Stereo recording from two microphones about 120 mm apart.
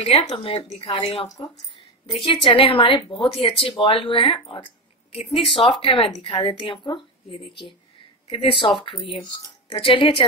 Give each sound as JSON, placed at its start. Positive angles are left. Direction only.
{"t": 0.0, "sound": "a woman's voice", "side_deg": 65}
{"t": 1.3, "sound": "speech", "side_deg": 30}
{"t": 2.1, "sound": "a woman's voice", "side_deg": 45}